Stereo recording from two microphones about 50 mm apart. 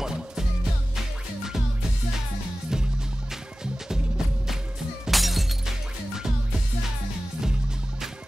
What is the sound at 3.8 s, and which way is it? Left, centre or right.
Music, centre.